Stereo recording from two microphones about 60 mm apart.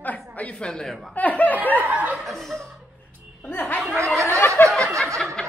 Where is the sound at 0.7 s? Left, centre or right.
Centre.